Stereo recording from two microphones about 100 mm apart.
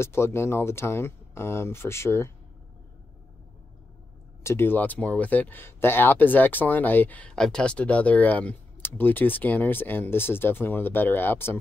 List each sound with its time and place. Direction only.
0.0 s speech: 25° left (ahead or behind)
4.4 s speech: 25° left (ahead or behind)